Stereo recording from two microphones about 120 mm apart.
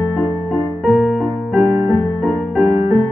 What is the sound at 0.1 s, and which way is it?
Music, centre (ahead or behind).